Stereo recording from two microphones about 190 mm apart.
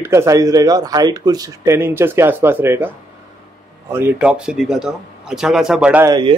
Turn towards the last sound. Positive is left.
turn(degrees=-20)  # may be behind; listen again after turning